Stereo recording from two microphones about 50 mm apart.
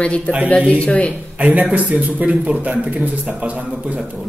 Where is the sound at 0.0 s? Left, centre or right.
Left.